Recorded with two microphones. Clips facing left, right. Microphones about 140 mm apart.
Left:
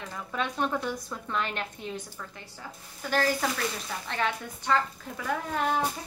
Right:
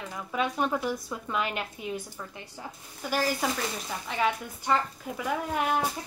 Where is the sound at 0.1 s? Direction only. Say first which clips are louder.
Right 3 dB; 10° right (ahead or behind).